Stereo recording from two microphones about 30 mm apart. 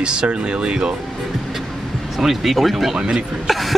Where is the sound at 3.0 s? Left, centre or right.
Right.